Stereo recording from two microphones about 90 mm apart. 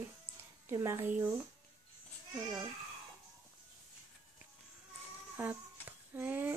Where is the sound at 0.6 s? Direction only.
30° right (ahead or behind).